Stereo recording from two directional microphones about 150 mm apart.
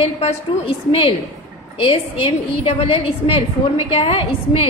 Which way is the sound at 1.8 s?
40° left (ahead or behind).